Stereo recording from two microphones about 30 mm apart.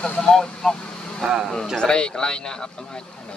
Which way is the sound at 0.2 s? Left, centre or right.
Left.